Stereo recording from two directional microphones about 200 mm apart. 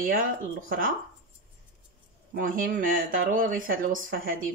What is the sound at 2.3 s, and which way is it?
Speech, 45° right (ahead or behind).